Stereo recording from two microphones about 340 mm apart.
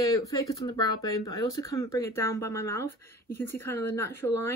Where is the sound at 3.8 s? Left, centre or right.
Left.